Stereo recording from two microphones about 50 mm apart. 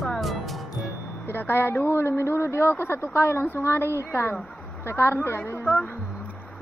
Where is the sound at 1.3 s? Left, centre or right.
Left.